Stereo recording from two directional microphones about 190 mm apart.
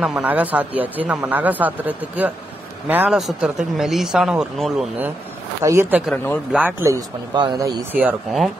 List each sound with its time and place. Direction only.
0.0 s a man's voice: 5° right (ahead or behind)
8.0 s a man's voice: 5° right (ahead or behind)